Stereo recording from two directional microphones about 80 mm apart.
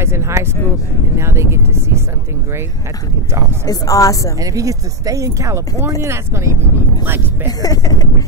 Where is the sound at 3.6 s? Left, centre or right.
Left.